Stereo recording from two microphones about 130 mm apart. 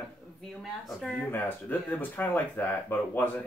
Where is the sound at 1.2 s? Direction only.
15° left (ahead or behind).